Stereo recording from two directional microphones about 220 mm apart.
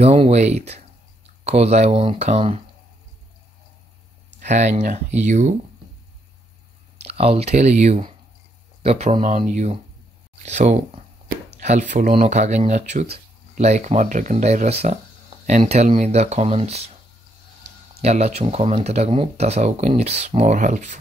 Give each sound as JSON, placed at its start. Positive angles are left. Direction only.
{"t": 0.0, "sound": "speech", "side_deg": -30}
{"t": 4.4, "sound": "speech", "side_deg": -30}
{"t": 7.0, "sound": "speech", "side_deg": -25}
{"t": 18.0, "sound": "speech", "side_deg": -30}